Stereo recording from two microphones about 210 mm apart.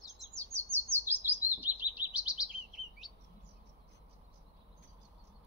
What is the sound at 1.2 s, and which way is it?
Chirp, 5° right (ahead or behind).